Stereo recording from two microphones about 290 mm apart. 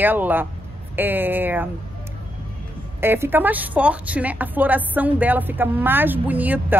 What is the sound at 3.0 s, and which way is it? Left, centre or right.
A woman's voice, centre.